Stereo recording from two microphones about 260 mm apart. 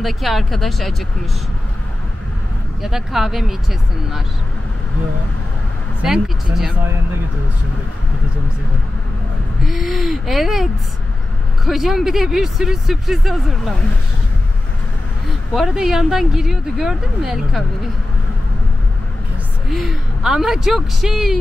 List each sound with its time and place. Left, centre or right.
0.0 s speech: centre
2.8 s speech: centre
6.0 s speech: centre
9.6 s speech: centre
15.5 s speech: centre
19.7 s speech: centre